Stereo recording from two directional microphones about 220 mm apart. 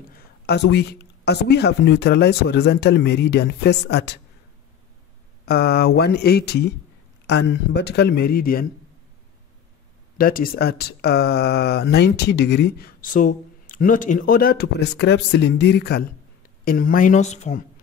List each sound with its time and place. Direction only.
0.5 s speech: 50° left (ahead or behind)
5.4 s speech: 45° left (ahead or behind)
10.1 s a woman's voice: 40° left (ahead or behind)